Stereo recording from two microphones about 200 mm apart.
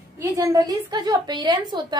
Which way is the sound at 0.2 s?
15° right (ahead or behind).